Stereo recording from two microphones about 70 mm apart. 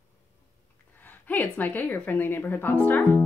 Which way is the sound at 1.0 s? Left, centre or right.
Left.